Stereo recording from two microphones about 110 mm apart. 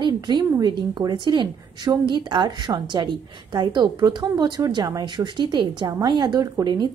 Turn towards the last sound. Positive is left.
turn(degrees=-40)  # may be behind; listen again after turning